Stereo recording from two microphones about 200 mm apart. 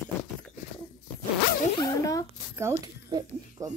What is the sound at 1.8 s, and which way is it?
Speech, 15° left (ahead or behind).